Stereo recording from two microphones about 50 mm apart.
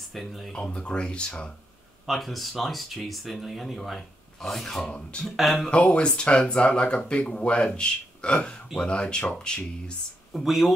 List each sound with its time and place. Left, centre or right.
0.1 s speech: centre
0.5 s speech: centre
2.0 s speech: centre
5.7 s speech: left
10.3 s speech: centre